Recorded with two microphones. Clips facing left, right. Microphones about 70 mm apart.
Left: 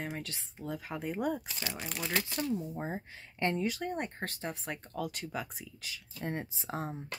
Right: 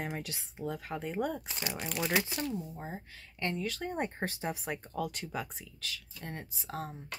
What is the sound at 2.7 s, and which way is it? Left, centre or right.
Speech, left.